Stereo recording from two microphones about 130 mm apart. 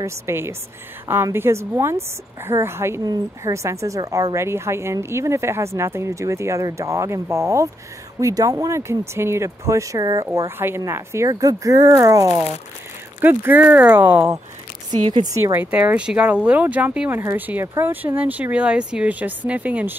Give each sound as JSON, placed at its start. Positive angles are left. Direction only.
{"t": 0.0, "sound": "a woman's voice", "side_deg": -20}
{"t": 13.2, "sound": "speech", "side_deg": -15}
{"t": 15.4, "sound": "speech", "side_deg": -15}